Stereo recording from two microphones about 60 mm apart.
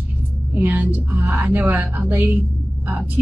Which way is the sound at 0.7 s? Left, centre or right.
Right.